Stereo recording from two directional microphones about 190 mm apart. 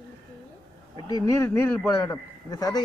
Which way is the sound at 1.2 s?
15° left (ahead or behind).